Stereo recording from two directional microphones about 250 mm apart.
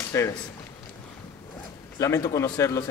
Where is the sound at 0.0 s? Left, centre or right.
Centre.